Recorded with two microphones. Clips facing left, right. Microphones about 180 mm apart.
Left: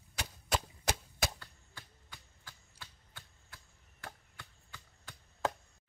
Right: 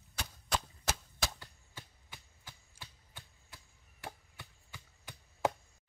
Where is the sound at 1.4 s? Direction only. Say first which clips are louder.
Right 2 dB; 20° right (ahead or behind).